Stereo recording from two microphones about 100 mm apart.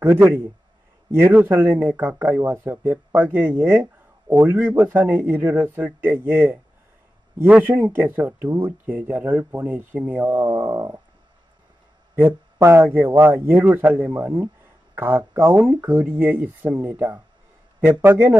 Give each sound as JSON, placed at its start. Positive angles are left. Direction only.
{"t": 0.0, "sound": "speech", "side_deg": -25}
{"t": 12.2, "sound": "speech", "side_deg": -25}